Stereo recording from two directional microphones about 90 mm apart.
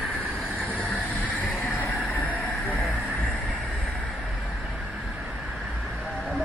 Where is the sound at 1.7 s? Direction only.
20° left (ahead or behind).